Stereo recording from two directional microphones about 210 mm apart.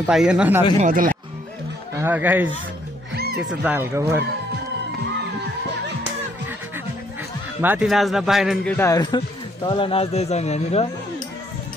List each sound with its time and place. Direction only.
0.1 s a man's voice: 5° right (ahead or behind)
0.7 s speech: 40° right (ahead or behind)
2.0 s speech: 10° right (ahead or behind)
3.2 s music: 50° right (ahead or behind)
3.4 s speech: 10° right (ahead or behind)
7.6 s a man's voice: 5° right (ahead or behind)
8.7 s a man's voice: 15° left (ahead or behind); by 10.9 s 30° left (ahead or behind)